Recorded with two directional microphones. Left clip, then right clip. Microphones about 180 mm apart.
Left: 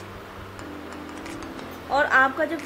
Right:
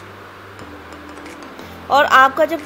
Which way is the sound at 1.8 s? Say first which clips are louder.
Right 8 dB; 15° right (ahead or behind).